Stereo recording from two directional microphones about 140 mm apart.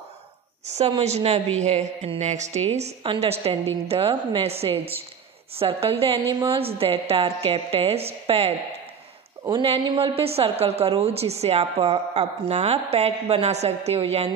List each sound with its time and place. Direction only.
0.7 s a woman's voice: 50° right (ahead or behind)
3.0 s a woman's voice: 40° right (ahead or behind)
9.5 s a woman's voice: 35° right (ahead or behind)